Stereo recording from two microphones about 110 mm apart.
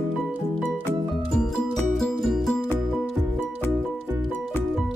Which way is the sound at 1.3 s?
5° left (ahead or behind).